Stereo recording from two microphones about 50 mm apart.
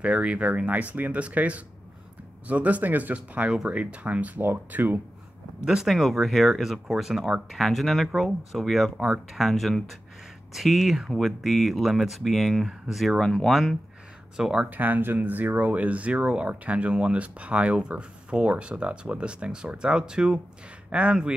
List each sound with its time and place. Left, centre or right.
0.0 s speech: right
3.4 s speech: right
5.9 s speech: centre
7.5 s speech: centre
13.2 s speech: centre
13.5 s speech: centre
14.7 s speech: right